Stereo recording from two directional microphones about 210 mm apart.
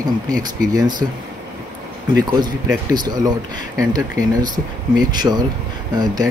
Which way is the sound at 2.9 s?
20° right (ahead or behind).